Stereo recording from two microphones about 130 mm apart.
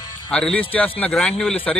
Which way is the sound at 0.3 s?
10° left (ahead or behind).